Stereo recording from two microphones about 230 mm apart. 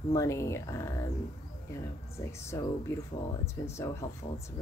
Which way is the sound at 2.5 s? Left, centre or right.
Centre.